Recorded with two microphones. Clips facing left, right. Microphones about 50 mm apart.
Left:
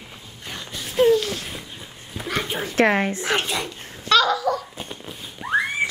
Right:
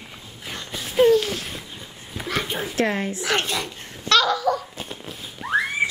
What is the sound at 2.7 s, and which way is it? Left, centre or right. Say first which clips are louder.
Speech: left 6 dB; left.